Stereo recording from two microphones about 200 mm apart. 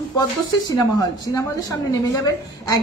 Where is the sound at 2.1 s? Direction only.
15° left (ahead or behind).